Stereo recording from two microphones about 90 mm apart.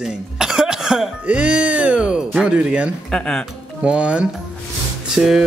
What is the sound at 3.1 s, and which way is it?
Speech, 10° left (ahead or behind).